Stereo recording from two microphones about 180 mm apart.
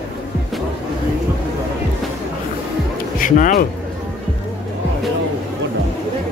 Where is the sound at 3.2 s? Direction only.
45° left (ahead or behind).